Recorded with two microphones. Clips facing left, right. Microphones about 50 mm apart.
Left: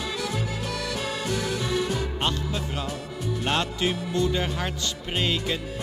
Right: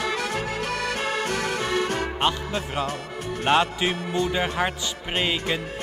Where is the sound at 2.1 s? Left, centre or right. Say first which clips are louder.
Right 3 dB; right.